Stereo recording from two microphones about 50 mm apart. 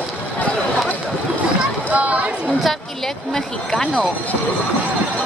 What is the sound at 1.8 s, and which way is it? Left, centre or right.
Speech, right.